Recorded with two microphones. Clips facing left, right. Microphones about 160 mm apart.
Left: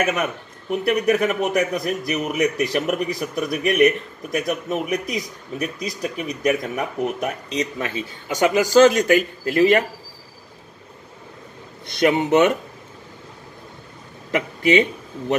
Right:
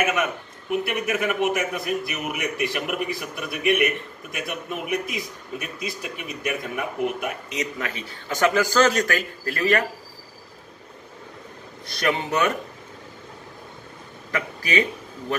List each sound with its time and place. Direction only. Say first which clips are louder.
0.7 s a man's voice: left 6 dB; 40° left (ahead or behind); by 9.8 s 20° left (ahead or behind)
11.9 s speech: left 7 dB; 20° left (ahead or behind)
14.3 s speech: left 7 dB; 25° left (ahead or behind)